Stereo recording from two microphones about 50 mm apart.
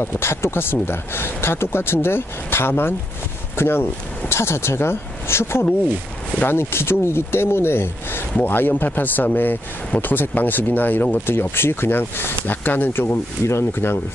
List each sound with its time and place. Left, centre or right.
0.0 s speech: left